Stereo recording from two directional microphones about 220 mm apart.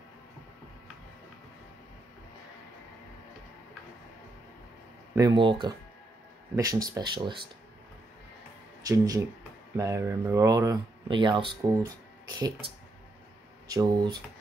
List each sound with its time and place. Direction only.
5.1 s speech: 20° right (ahead or behind)
8.8 s speech: 15° right (ahead or behind)
13.7 s speech: 15° right (ahead or behind)